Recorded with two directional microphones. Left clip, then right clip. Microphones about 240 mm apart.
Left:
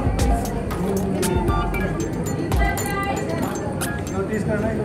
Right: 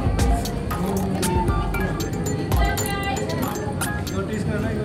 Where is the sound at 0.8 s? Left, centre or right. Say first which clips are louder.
Left 2 dB; centre.